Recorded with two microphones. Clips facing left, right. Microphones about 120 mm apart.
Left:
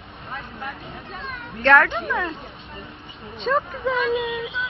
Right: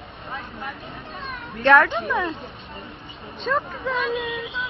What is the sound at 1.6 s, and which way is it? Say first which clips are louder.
Speech: right 1 dB; 15° right (ahead or behind).